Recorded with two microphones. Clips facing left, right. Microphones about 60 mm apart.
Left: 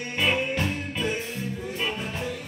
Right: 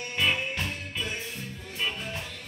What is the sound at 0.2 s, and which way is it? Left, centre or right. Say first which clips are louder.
Music: left 3 dB; centre.